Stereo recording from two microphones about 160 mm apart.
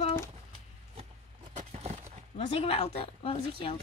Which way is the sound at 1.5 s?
45° right (ahead or behind).